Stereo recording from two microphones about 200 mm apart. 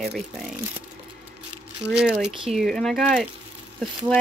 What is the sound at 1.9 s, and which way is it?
Speech, 5° right (ahead or behind).